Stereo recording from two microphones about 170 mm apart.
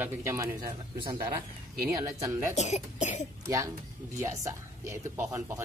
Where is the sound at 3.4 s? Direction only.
20° right (ahead or behind).